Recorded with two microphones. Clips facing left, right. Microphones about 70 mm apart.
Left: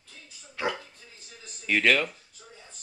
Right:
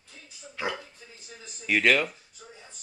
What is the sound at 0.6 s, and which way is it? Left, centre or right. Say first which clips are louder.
Dog: left 2 dB; centre.